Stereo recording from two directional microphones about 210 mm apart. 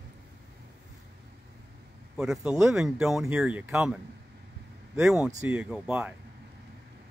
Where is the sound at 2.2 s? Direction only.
Centre (ahead or behind).